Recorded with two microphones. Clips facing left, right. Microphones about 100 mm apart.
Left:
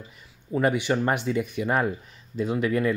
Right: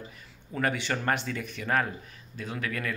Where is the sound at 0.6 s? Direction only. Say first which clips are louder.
Left 6 dB; 15° left (ahead or behind).